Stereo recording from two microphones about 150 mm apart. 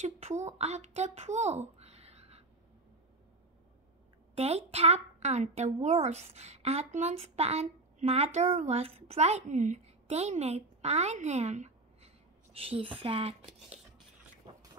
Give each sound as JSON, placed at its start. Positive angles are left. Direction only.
{"t": 0.0, "sound": "a child's voice", "side_deg": -50}
{"t": 4.4, "sound": "speech", "side_deg": -45}
{"t": 12.5, "sound": "speech", "side_deg": -40}